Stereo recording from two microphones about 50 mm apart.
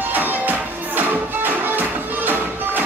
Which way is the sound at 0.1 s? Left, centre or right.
Right.